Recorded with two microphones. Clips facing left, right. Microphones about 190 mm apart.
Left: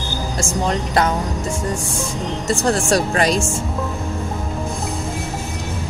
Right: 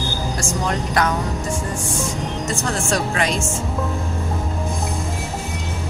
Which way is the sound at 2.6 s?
35° left (ahead or behind).